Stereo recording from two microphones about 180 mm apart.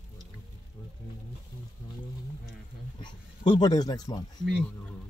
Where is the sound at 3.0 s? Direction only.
25° left (ahead or behind).